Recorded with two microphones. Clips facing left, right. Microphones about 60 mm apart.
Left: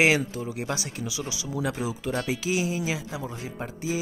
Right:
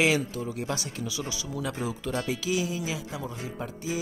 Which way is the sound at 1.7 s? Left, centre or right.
Centre.